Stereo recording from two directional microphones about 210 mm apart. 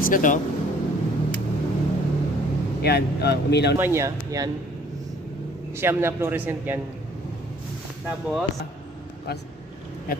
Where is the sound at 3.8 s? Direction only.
10° right (ahead or behind).